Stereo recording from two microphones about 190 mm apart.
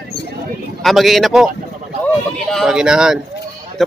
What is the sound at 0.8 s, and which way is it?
Speech, centre (ahead or behind).